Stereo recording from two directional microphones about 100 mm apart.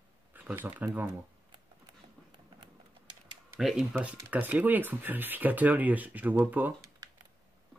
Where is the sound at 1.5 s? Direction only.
50° right (ahead or behind).